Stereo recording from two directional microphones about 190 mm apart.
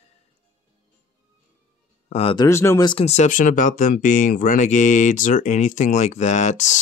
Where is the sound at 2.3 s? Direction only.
15° left (ahead or behind).